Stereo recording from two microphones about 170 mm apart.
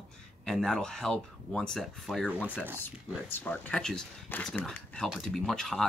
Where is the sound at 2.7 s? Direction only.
10° left (ahead or behind).